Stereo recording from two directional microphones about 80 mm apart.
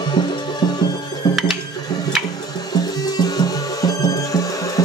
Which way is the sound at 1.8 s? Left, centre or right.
Left.